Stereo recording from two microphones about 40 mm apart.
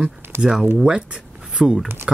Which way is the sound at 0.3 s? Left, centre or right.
Right.